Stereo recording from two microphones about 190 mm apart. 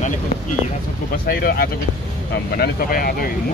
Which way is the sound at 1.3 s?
55° left (ahead or behind).